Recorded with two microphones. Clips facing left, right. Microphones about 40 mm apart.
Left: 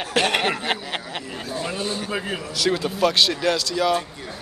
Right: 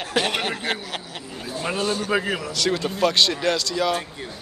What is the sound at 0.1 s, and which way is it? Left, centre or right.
Speech, left.